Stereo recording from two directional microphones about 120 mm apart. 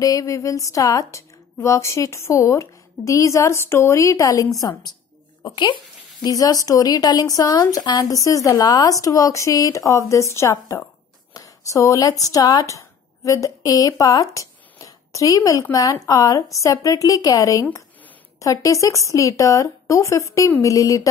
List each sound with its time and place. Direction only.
0.0 s a woman's voice: 30° left (ahead or behind)
6.2 s a woman's voice: 30° left (ahead or behind)